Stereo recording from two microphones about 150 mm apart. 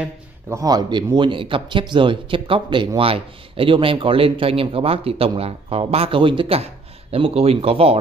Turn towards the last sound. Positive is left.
turn(degrees=-40)  # may be behind; listen again after turning